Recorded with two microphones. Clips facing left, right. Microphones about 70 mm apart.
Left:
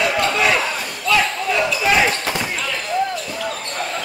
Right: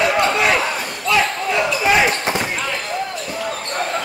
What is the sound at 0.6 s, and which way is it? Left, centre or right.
Slam, centre.